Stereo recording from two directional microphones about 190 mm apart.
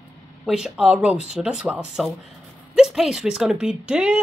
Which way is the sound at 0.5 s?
Centre (ahead or behind).